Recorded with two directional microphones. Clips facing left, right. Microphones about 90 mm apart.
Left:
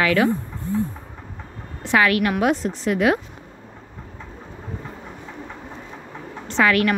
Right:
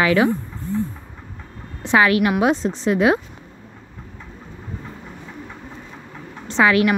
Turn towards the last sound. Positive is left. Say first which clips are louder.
# right 2 dB
turn(degrees=-15)  # may be behind; listen again after turning